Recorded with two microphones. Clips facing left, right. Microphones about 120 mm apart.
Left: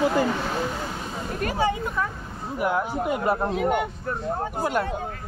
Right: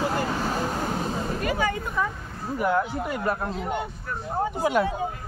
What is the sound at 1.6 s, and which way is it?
Speech, 30° left (ahead or behind).